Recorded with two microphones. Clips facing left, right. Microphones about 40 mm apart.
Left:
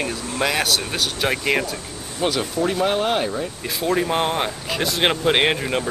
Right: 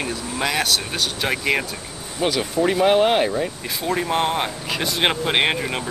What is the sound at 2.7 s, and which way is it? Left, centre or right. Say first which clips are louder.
Speech: right 6 dB; centre.